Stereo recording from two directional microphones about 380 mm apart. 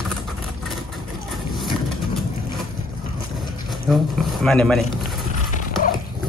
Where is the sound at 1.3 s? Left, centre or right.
Centre.